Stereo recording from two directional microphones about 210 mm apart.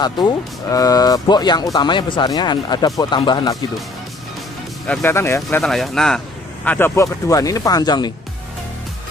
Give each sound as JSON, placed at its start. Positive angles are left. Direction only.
{"t": 0.0, "sound": "speech", "side_deg": 20}
{"t": 4.8, "sound": "speech", "side_deg": 10}